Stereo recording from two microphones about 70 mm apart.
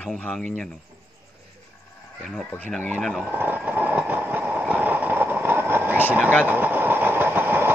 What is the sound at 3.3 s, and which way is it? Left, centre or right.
Vehicle, right.